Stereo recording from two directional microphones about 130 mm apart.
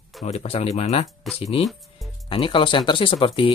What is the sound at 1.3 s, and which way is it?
Speech, centre (ahead or behind).